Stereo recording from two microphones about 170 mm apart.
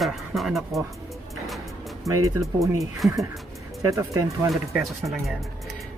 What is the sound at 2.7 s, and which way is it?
Speech, centre (ahead or behind).